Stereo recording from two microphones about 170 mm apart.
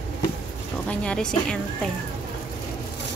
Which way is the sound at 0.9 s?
5° left (ahead or behind).